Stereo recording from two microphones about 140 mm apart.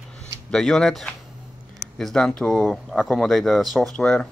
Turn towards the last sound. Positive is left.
turn(degrees=5)  # may be behind; listen again after turning